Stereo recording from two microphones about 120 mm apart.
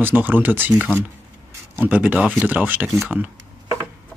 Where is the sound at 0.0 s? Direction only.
15° right (ahead or behind).